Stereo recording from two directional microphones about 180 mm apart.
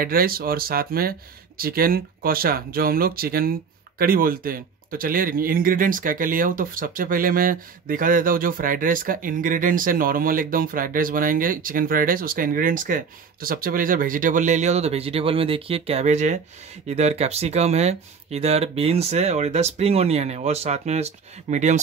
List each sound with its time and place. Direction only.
0.0 s speech: 55° right (ahead or behind)